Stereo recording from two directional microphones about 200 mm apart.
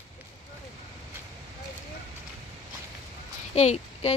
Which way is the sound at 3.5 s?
35° left (ahead or behind).